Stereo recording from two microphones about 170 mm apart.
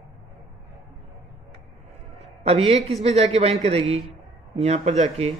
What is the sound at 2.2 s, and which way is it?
A man's voice, 35° right (ahead or behind).